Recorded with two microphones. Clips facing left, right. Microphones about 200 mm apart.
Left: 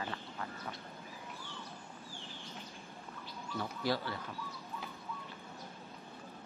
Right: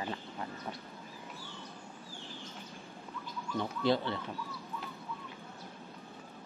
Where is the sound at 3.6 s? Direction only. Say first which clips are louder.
Right 5 dB; 25° right (ahead or behind).